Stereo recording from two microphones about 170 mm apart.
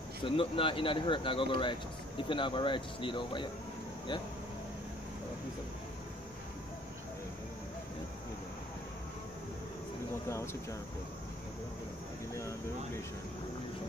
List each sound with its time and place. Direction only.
0.2 s speech: 30° left (ahead or behind)
10.2 s speech: 15° left (ahead or behind)
12.4 s speech: 15° left (ahead or behind)